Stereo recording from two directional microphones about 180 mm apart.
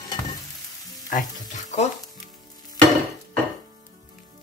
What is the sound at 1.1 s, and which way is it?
Frying, 45° left (ahead or behind).